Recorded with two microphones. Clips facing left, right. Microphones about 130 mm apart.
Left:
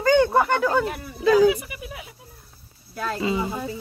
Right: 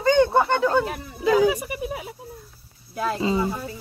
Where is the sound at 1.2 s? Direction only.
20° right (ahead or behind).